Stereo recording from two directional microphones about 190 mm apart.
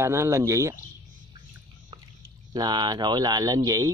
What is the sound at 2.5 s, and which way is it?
Speech, 20° right (ahead or behind).